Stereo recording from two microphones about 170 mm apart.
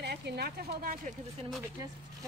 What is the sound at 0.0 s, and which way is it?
Speech, 75° right (ahead or behind).